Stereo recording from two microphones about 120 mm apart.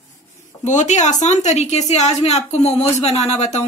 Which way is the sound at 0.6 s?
80° left.